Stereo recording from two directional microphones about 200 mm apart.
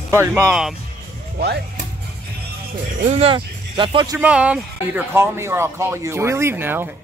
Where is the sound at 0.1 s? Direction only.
10° right (ahead or behind).